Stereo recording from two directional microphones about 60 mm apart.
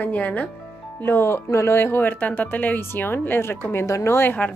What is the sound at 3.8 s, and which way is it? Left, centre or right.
Speech, left.